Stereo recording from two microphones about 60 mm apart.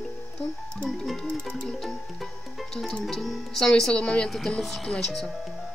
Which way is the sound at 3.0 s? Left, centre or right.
Centre.